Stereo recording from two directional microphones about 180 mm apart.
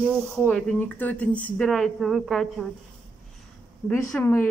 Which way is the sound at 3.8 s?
15° left (ahead or behind).